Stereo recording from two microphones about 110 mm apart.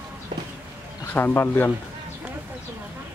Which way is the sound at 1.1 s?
20° left (ahead or behind).